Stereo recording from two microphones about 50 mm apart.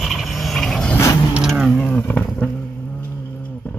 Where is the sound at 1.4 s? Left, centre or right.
Centre.